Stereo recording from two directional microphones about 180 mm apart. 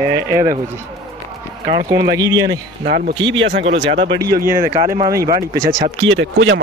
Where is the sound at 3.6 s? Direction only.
85° right; by 4.2 s 65° right (ahead or behind).